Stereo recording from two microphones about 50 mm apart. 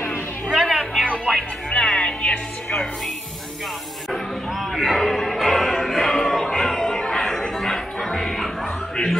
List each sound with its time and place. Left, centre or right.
0.5 s a sound: centre
1.3 s music: centre
4.1 s music: centre